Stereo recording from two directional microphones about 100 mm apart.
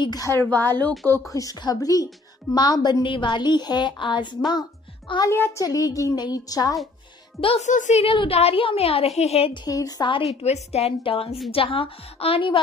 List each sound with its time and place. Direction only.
0.0 s a woman's voice: 40° left (ahead or behind)
0.3 s a woman's voice: 20° left (ahead or behind)
1.3 s a woman's voice: 35° left (ahead or behind)
7.3 s a woman's voice: 80° left
9.7 s a woman's voice: 40° left (ahead or behind)
10.4 s a woman's voice: 90° left
11.5 s a woman's voice: 65° left (ahead or behind)